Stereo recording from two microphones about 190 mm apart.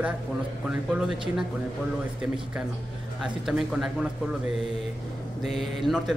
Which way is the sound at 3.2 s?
Centre (ahead or behind).